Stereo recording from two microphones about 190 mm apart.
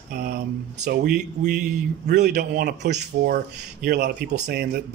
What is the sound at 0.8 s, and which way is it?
Speech, 55° right (ahead or behind).